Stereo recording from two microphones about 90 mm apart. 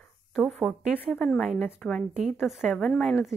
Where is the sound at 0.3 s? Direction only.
5° right (ahead or behind).